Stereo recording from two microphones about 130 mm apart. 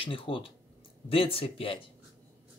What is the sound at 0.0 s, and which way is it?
Speech, 40° left (ahead or behind).